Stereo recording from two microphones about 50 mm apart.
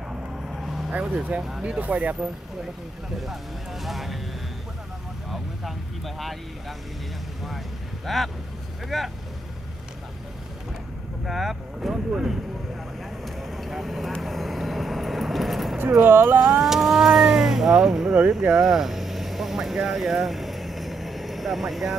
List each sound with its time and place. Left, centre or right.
0.5 s vehicle: centre
1.1 s speech: right
3.8 s speech: centre
5.3 s speech: centre
7.4 s speech: centre
11.2 s speech: centre
13.2 s vehicle: centre
16.0 s speech: right
16.3 s vehicle: centre